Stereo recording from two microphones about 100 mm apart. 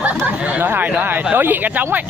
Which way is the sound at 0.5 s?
20° right (ahead or behind).